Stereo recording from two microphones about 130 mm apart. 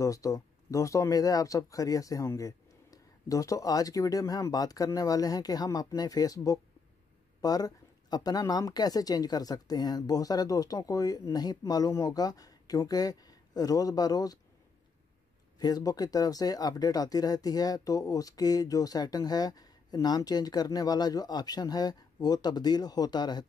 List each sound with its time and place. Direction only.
0.0 s speech: 25° left (ahead or behind)
15.6 s speech: 30° left (ahead or behind)